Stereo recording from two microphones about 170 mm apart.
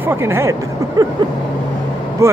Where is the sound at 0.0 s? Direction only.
15° right (ahead or behind).